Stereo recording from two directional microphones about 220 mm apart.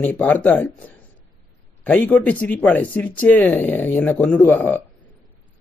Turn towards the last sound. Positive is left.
turn(degrees=10)  # may be behind; listen again after turning